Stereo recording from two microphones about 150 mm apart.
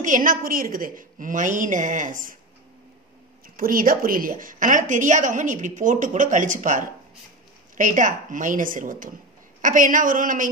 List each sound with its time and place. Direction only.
0.0 s a woman's voice: 65° right (ahead or behind)
3.5 s a woman's voice: 70° right (ahead or behind)